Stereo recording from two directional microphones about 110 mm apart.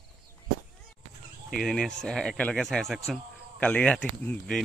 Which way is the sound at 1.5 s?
5° left (ahead or behind).